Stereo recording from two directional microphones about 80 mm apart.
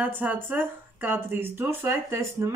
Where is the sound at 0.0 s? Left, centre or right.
Right.